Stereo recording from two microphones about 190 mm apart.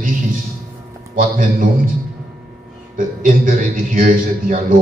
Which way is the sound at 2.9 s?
45° right (ahead or behind).